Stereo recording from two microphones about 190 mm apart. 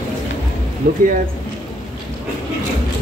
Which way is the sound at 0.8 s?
50° right (ahead or behind).